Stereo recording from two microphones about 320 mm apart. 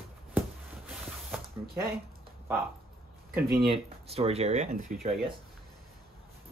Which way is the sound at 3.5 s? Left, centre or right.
Centre.